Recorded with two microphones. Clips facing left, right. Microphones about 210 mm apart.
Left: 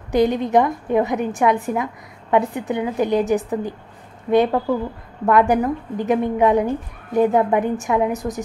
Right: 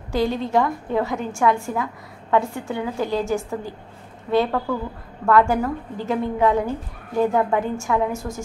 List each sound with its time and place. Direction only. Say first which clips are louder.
0.1 s a woman's voice: left 4 dB; 20° left (ahead or behind)